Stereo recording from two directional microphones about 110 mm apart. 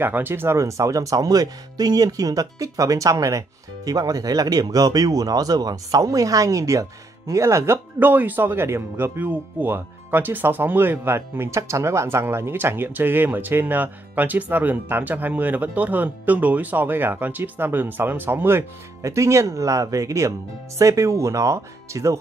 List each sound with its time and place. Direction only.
0.0 s speech: 20° right (ahead or behind)